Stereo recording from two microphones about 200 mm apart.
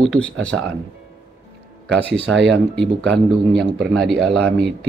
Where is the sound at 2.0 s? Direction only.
5° left (ahead or behind).